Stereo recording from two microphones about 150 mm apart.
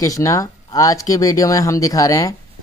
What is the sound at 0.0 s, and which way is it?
Speech, 20° left (ahead or behind).